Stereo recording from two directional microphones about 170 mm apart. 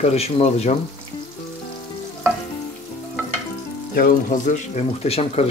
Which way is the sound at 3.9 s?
50° left (ahead or behind).